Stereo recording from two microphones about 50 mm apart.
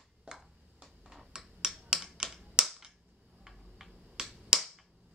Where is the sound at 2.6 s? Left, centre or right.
Centre.